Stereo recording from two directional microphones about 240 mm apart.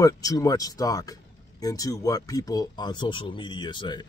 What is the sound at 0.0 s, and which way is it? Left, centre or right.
Speech, centre.